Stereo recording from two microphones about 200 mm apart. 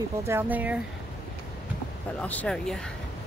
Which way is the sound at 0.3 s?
10° right (ahead or behind).